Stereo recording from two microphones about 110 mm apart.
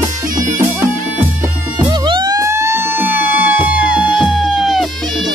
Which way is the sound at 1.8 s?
45° right (ahead or behind).